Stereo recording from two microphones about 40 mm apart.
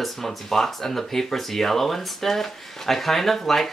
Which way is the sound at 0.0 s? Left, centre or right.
Centre.